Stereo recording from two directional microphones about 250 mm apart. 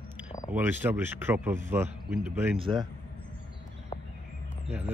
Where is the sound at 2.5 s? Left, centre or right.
Centre.